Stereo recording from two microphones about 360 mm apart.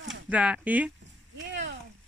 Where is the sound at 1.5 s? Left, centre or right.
Right.